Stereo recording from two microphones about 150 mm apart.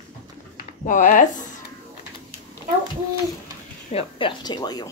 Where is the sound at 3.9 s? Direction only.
35° left (ahead or behind).